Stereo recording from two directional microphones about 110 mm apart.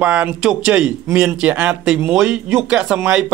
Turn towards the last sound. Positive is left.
turn(degrees=-5)  # may be behind; listen again after turning